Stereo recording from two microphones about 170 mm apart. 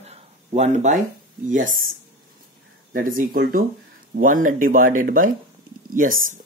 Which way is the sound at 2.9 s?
55° right (ahead or behind).